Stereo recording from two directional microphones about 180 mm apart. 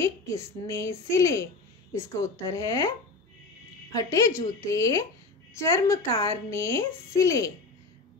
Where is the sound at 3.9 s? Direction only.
20° left (ahead or behind).